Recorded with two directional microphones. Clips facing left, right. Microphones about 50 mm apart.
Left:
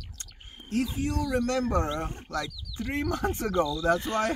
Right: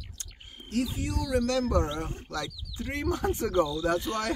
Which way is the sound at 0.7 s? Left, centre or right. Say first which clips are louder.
Left 2 dB; left.